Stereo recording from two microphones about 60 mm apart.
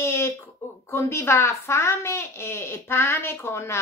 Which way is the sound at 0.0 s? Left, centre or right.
Left.